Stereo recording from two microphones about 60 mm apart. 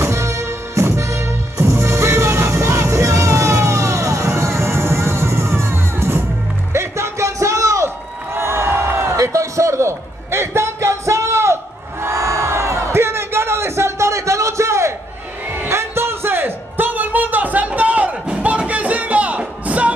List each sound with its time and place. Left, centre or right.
0.0 s music: right
8.4 s music: right
9.1 s a sound: right
15.5 s music: right